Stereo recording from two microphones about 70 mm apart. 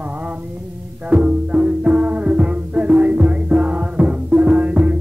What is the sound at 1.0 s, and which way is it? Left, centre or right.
Music, centre.